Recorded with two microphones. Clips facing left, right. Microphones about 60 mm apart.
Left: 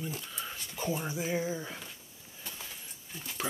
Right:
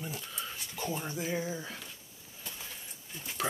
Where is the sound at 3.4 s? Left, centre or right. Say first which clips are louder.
Right 2 dB; centre.